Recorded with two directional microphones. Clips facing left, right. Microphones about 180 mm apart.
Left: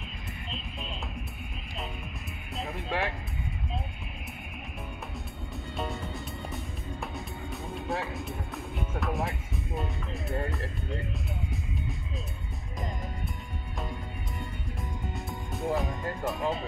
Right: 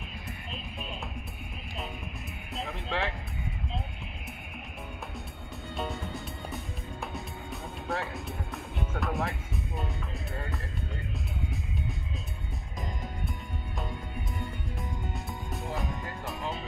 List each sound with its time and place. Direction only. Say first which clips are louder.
2.6 s speech: left 1 dB; 15° left (ahead or behind)
5.8 s music: even; centre (ahead or behind)
9.8 s speech: left 5 dB; centre (ahead or behind)
15.5 s speech: left 6 dB; centre (ahead or behind)